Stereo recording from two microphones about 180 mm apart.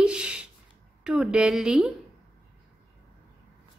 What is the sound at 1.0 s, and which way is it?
Speech, 5° right (ahead or behind).